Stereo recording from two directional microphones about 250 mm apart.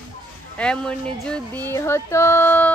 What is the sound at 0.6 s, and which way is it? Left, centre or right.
Music, centre.